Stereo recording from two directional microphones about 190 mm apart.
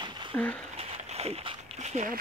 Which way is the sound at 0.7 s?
30° right (ahead or behind).